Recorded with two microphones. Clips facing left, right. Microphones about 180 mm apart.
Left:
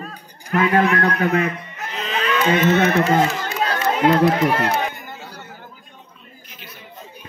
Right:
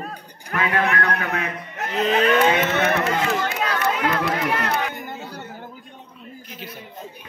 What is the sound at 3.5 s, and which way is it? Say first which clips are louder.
Run: left 2 dB; 35° left (ahead or behind).